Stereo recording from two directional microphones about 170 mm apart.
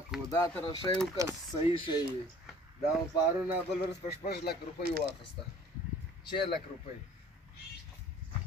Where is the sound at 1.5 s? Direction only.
30° left (ahead or behind).